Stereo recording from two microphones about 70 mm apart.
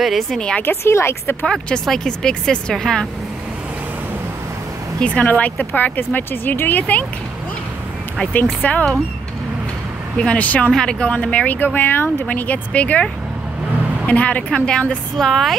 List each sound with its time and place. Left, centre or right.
0.0 s a woman's voice: centre
0.6 s a woman's voice: left
1.4 s speech: centre
5.0 s speech: left
8.6 s speech: left
10.1 s speech: centre
14.0 s speech: left
15.1 s a woman's voice: centre